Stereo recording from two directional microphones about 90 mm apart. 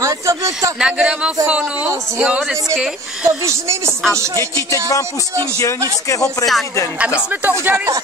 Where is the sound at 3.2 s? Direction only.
35° right (ahead or behind).